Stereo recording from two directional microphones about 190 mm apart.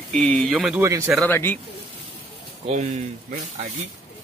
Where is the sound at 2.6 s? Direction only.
35° right (ahead or behind).